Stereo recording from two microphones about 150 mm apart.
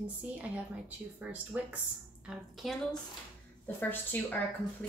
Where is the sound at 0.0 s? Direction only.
10° right (ahead or behind).